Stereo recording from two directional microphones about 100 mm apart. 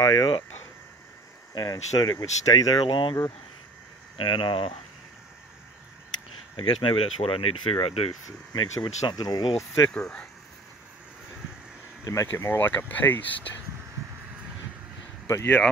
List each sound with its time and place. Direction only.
0.0 s speech: 40° left (ahead or behind)
1.5 s speech: 45° left (ahead or behind)
4.3 s speech: 60° left (ahead or behind)
6.5 s speech: 60° left (ahead or behind)
8.8 s speech: 45° left (ahead or behind)
9.8 s speech: 10° left (ahead or behind)
12.0 s speech: 30° left (ahead or behind)
15.2 s speech: 25° left (ahead or behind)